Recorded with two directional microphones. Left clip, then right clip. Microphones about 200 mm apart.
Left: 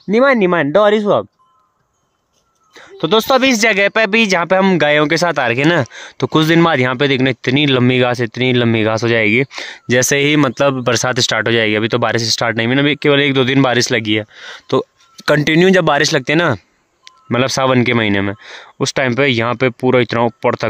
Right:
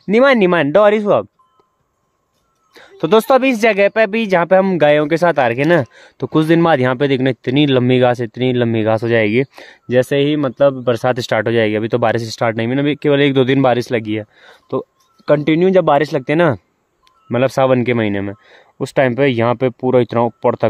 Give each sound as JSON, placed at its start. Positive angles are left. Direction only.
{"t": 0.1, "sound": "speech", "side_deg": 0}
{"t": 2.7, "sound": "speech", "side_deg": 0}
{"t": 11.1, "sound": "speech", "side_deg": 0}
{"t": 15.1, "sound": "speech", "side_deg": 15}